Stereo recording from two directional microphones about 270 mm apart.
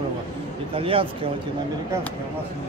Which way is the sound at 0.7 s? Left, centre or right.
Centre.